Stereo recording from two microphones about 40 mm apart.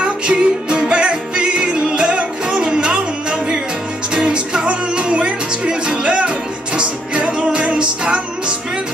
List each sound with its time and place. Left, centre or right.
0.0 s music: right